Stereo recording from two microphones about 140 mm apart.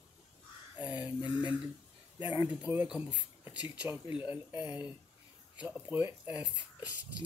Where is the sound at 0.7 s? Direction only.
10° right (ahead or behind).